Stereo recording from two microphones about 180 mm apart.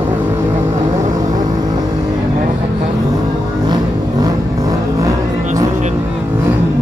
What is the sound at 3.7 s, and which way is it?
Vehicle, 20° right (ahead or behind).